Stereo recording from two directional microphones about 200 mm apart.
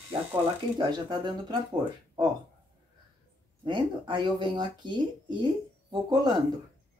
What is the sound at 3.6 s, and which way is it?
Speech, 25° right (ahead or behind).